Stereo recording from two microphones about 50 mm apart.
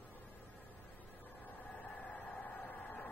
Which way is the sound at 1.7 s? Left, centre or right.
Left.